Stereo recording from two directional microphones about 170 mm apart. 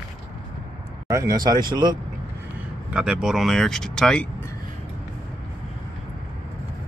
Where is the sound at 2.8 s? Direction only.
5° right (ahead or behind).